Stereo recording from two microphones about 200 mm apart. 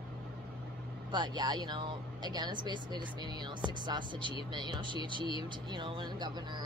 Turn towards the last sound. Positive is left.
turn(degrees=-20)  # may be behind; listen again after turning